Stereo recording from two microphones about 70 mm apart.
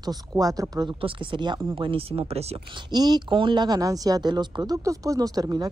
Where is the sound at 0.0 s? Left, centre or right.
Right.